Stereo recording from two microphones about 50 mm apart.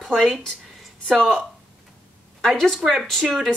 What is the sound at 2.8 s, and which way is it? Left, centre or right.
Speech, centre.